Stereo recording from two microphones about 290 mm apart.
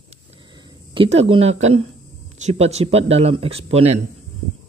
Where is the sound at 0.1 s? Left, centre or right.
Centre.